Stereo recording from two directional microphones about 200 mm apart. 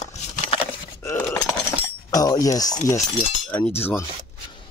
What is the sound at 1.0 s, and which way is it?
Clip-clop, 10° left (ahead or behind).